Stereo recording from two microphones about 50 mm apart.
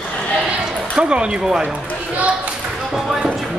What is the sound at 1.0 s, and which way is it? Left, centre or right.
Speech, centre.